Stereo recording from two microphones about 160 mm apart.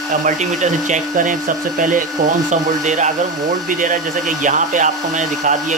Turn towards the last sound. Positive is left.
turn(degrees=-50)  # may be behind; listen again after turning